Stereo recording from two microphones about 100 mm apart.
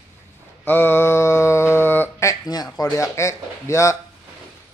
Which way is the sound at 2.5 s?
40° left (ahead or behind).